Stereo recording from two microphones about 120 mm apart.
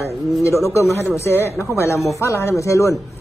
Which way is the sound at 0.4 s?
25° left (ahead or behind).